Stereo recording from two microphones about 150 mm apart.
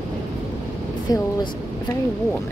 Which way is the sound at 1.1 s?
25° left (ahead or behind).